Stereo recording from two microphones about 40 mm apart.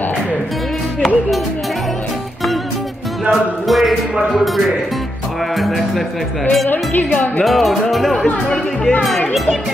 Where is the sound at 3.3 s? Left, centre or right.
Centre.